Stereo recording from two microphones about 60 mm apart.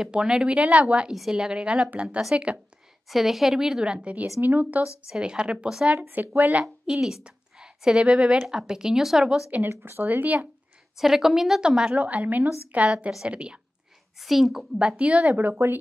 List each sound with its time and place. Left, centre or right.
0.0 s a woman's voice: centre
3.1 s a woman's voice: centre; by 4.8 s right
5.0 s a woman's voice: centre
6.1 s a woman's voice: right
6.6 s a woman's voice: centre
9.8 s a woman's voice: right
11.0 s a woman's voice: centre
14.1 s a woman's voice: centre
14.8 s a woman's voice: centre
15.3 s a woman's voice: right